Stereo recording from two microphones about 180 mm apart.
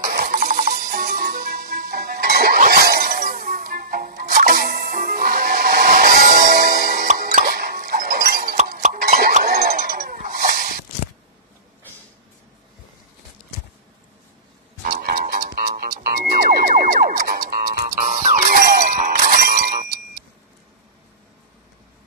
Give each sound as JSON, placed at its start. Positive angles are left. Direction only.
{"t": 0.0, "sound": "music", "side_deg": -55}
{"t": 8.8, "sound": "a sound", "side_deg": -50}
{"t": 9.4, "sound": "dog", "side_deg": -60}
{"t": 14.8, "sound": "music", "side_deg": -55}